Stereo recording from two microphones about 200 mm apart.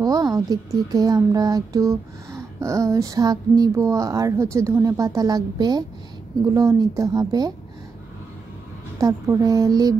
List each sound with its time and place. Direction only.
0.0 s a woman's voice: 20° right (ahead or behind)
8.9 s a woman's voice: 15° right (ahead or behind)